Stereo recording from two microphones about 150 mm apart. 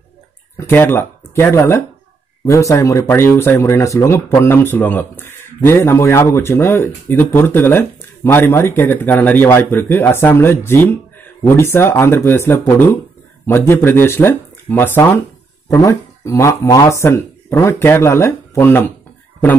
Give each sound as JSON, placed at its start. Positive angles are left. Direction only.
{"t": 0.6, "sound": "speech", "side_deg": 15}